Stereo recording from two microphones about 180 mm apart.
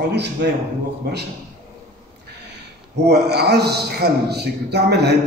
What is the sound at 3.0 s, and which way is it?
A man's voice, 65° right (ahead or behind).